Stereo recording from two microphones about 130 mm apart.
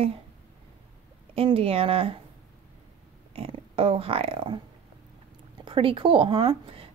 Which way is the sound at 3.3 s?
45° right (ahead or behind).